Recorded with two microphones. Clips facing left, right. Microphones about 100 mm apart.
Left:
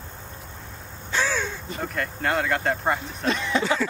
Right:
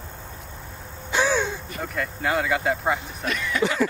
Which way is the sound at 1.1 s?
15° right (ahead or behind).